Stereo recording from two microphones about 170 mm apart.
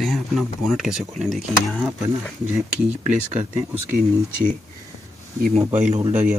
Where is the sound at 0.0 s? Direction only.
Centre (ahead or behind).